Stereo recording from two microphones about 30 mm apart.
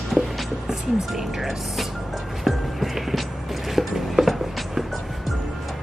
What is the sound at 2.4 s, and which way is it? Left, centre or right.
Music, centre.